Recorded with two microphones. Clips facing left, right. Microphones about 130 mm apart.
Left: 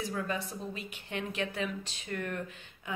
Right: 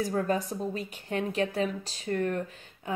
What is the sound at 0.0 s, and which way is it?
Speech, 40° right (ahead or behind).